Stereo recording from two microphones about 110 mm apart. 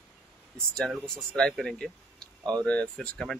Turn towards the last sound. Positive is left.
turn(degrees=5)  # may be behind; listen again after turning